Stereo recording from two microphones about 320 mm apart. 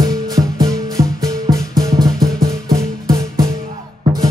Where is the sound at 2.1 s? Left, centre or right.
Right.